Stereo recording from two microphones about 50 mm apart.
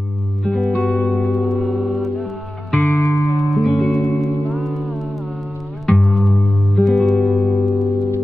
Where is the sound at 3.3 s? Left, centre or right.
Centre.